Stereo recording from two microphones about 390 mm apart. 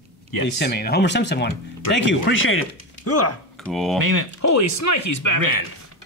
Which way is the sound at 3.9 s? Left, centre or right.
Right.